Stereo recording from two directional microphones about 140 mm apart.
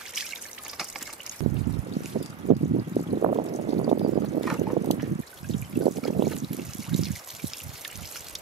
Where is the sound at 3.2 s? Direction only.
50° right (ahead or behind).